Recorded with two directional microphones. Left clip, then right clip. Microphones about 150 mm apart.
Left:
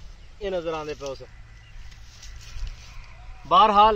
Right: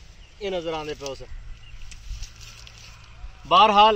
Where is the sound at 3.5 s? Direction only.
20° right (ahead or behind).